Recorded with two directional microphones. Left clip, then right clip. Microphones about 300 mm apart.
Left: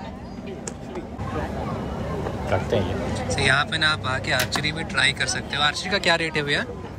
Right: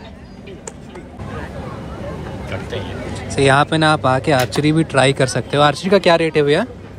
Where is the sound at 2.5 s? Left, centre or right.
Left.